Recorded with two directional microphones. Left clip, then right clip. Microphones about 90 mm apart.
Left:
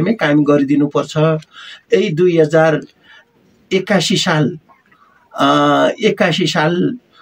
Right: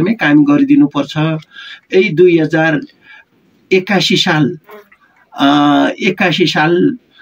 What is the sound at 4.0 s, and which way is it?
Speech, 55° left (ahead or behind).